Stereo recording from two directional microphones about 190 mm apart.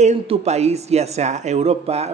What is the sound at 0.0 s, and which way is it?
Speech, 35° right (ahead or behind).